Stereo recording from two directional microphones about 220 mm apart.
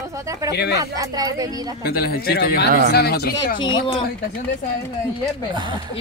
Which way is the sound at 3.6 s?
20° left (ahead or behind).